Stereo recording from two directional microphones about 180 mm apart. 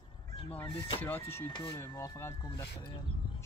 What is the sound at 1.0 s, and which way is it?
Speech, 10° left (ahead or behind).